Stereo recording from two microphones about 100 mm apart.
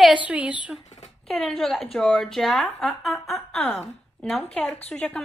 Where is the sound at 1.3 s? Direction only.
Centre (ahead or behind).